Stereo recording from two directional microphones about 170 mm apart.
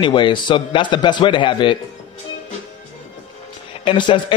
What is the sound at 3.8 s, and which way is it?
Speech, 30° left (ahead or behind).